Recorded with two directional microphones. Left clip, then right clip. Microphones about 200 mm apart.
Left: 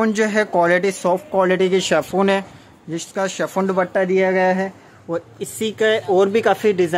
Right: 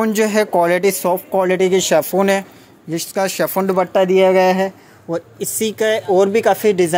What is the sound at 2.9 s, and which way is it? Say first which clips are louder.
Speech: right 4 dB; 15° right (ahead or behind).